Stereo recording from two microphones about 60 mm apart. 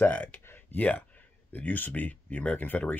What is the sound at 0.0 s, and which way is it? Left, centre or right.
Speech, left.